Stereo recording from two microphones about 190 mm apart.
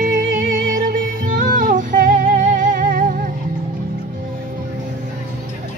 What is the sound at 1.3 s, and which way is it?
Music, 45° right (ahead or behind).